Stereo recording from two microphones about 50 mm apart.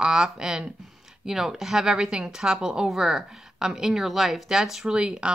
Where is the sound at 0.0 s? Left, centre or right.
Centre.